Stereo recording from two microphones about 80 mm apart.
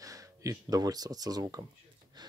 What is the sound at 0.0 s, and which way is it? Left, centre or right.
Speech, right.